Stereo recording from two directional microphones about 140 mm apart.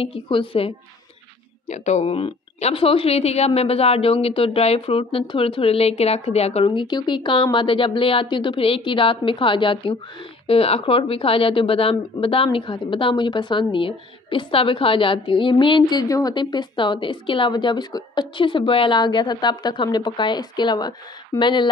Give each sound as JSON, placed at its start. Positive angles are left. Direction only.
{"t": 0.0, "sound": "a woman's voice", "side_deg": 40}
{"t": 1.7, "sound": "a woman's voice", "side_deg": 55}